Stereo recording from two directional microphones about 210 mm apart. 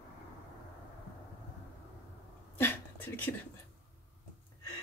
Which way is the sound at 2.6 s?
10° left (ahead or behind).